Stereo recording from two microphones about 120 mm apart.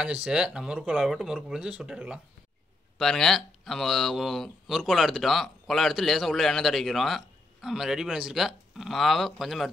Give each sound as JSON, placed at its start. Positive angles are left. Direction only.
{"t": 0.0, "sound": "speech", "side_deg": -10}